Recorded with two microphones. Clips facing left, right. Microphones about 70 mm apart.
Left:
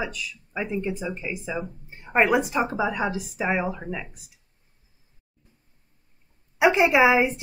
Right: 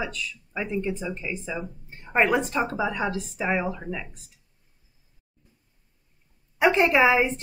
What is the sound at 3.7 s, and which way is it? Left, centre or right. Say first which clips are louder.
Speech: left 1 dB; centre.